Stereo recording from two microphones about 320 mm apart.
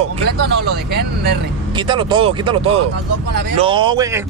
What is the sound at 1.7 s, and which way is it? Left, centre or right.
Speech, centre.